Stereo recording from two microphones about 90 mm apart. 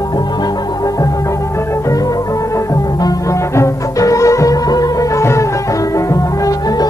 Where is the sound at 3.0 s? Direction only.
35° left (ahead or behind).